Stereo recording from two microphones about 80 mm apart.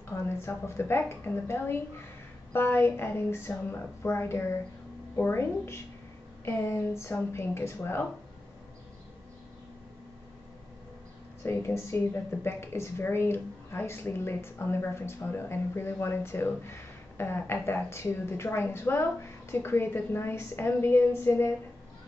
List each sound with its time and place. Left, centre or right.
0.1 s a woman's voice: left
11.4 s a woman's voice: left